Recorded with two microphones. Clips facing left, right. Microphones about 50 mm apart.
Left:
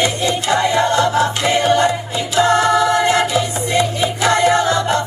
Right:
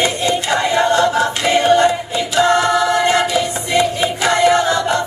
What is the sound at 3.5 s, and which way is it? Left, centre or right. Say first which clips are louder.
Music: right 1 dB; right.